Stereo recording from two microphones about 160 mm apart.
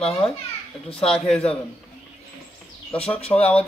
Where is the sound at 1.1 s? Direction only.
5° left (ahead or behind).